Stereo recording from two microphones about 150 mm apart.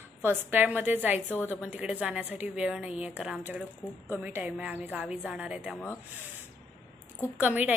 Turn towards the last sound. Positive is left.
turn(degrees=-10)  # may be behind; listen again after turning